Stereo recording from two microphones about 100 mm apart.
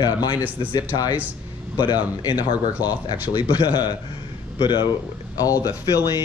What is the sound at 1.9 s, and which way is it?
Speech, 45° left (ahead or behind).